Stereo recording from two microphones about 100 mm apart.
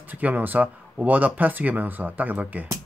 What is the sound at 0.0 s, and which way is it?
Speech, 15° right (ahead or behind).